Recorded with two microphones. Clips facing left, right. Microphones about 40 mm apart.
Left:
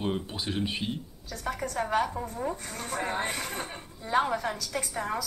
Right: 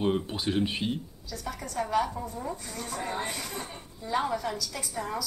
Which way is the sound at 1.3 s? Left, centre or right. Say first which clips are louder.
Left 3 dB; left.